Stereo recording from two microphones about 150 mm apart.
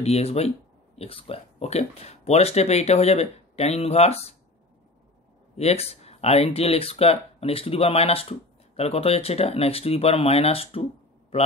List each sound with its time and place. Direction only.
0.0 s speech: 45° left (ahead or behind)
5.6 s speech: 45° left (ahead or behind)